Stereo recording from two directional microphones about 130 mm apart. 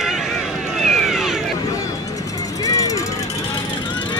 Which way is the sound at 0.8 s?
Centre (ahead or behind).